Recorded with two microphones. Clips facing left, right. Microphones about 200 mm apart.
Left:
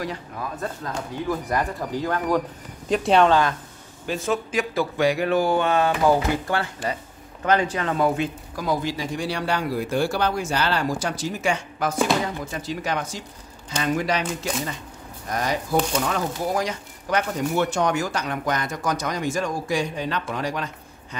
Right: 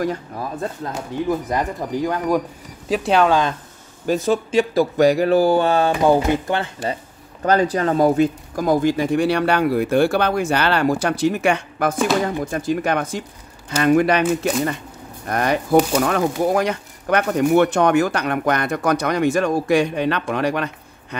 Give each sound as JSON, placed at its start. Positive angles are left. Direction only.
{"t": 0.0, "sound": "speech", "side_deg": -45}
{"t": 1.5, "sound": "speech", "side_deg": -20}
{"t": 2.9, "sound": "speech", "side_deg": 0}
{"t": 4.1, "sound": "speech", "side_deg": -30}
{"t": 7.4, "sound": "speech", "side_deg": -40}
{"t": 15.2, "sound": "speech", "side_deg": -60}